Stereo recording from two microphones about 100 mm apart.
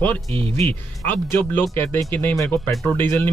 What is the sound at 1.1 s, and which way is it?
Speech, 20° left (ahead or behind).